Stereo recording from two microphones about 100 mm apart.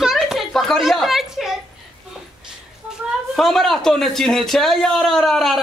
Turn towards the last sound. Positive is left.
turn(degrees=0)  # may be behind; listen again after turning